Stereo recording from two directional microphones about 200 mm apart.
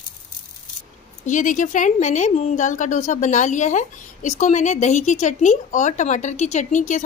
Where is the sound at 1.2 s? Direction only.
40° left (ahead or behind).